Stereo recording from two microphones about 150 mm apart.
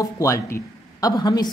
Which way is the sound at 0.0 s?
20° left (ahead or behind).